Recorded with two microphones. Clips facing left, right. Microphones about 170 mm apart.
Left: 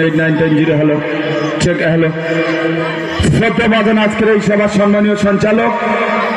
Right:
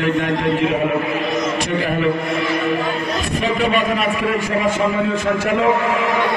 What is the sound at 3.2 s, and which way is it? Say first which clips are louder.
A man's voice: left 10 dB; 90° left.